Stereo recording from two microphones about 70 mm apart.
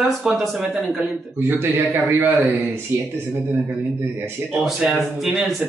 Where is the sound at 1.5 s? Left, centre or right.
Right.